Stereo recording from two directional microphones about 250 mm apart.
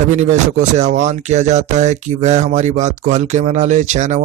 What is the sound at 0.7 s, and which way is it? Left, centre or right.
Speech, right.